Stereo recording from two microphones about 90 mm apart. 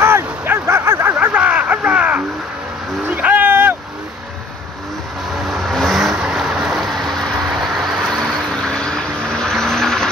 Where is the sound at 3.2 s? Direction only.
20° right (ahead or behind).